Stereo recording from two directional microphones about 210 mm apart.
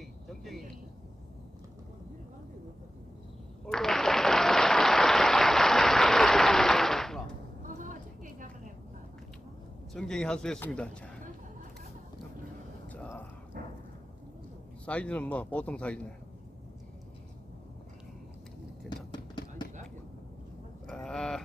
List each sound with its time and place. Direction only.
0.0 s vehicle: centre (ahead or behind)
3.6 s applause: centre (ahead or behind)
7.6 s vehicle: 40° right (ahead or behind)
9.9 s speech: 5° left (ahead or behind)
12.8 s a sound: 5° left (ahead or behind)
13.6 s a sound: 45° right (ahead or behind)
14.9 s speech: 5° left (ahead or behind)
18.9 s a sound: centre (ahead or behind)
20.8 s sheep: 5° left (ahead or behind)